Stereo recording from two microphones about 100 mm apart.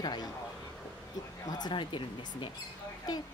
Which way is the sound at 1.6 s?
55° left (ahead or behind).